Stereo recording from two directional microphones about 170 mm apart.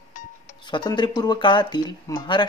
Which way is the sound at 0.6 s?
25° left (ahead or behind).